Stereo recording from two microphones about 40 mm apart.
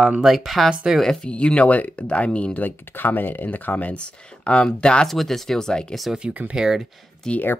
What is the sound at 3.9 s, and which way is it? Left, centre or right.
Speech, left.